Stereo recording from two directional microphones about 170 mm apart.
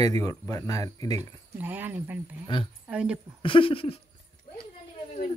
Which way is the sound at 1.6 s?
10° right (ahead or behind).